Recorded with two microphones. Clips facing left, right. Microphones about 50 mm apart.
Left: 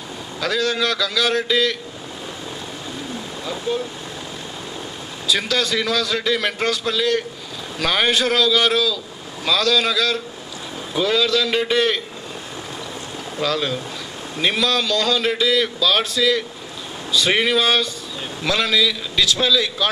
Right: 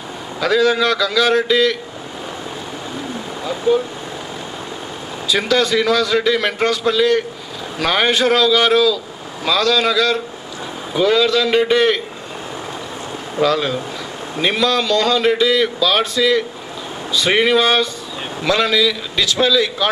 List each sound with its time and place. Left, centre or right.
0.4 s speech: right
3.4 s a man's voice: centre
5.3 s a man's voice: centre
13.4 s a man's voice: right